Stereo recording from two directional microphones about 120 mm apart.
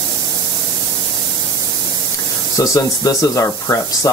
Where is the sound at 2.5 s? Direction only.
30° left (ahead or behind).